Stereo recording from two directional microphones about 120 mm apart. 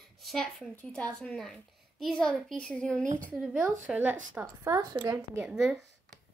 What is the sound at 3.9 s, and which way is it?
Speech, 15° right (ahead or behind).